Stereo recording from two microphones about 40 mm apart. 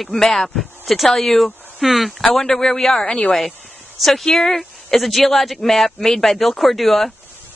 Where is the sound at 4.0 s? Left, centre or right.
Centre.